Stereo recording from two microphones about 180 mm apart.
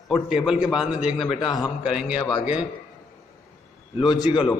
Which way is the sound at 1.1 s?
30° left (ahead or behind).